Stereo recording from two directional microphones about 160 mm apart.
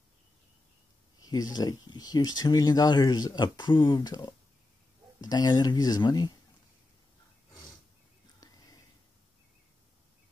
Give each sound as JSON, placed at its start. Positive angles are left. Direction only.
{"t": 1.2, "sound": "speech", "side_deg": 25}
{"t": 8.4, "sound": "whispering", "side_deg": 25}